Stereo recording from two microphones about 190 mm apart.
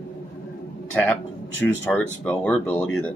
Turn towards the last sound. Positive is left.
turn(degrees=5)  # may be behind; listen again after turning